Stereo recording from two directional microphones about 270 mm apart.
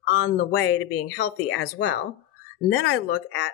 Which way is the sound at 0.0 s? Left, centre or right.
Left.